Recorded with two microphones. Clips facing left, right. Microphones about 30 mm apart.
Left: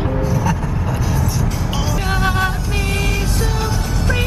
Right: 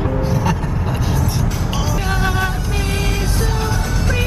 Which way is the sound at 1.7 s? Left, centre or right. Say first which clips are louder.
Left 1 dB; centre.